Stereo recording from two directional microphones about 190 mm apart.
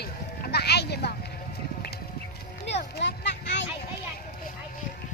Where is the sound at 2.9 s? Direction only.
65° left (ahead or behind).